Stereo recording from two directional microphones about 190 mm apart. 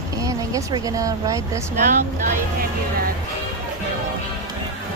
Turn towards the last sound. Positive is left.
turn(degrees=-45)  # may be behind; listen again after turning